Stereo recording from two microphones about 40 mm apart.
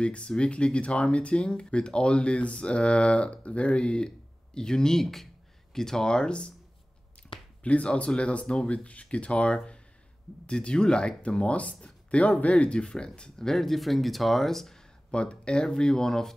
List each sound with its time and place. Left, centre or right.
0.0 s speech: left
4.6 s speech: centre
5.0 s speech: centre; by 6.5 s left
7.2 s a sound: centre
7.6 s speech: left; by 14.8 s centre
15.0 s speech: left